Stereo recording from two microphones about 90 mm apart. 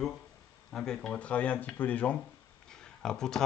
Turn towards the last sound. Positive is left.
turn(degrees=5)  # may be behind; listen again after turning